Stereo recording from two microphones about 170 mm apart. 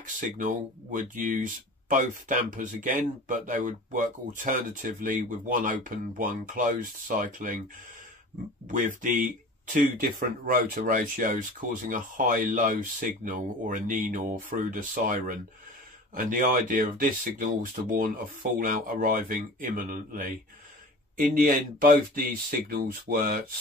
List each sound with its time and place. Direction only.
0.0 s speech: 50° right (ahead or behind)
8.6 s speech: 50° right (ahead or behind)